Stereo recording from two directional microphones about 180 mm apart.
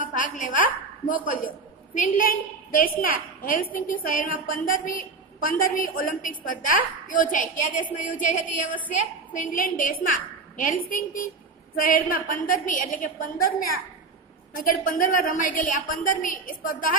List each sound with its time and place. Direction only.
0.0 s a woman's voice: 50° left (ahead or behind)